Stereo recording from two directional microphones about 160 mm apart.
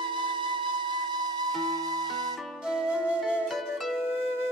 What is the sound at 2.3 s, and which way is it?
Music, centre (ahead or behind).